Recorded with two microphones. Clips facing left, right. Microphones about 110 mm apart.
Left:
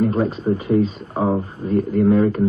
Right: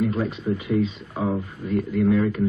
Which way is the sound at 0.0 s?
40° left (ahead or behind).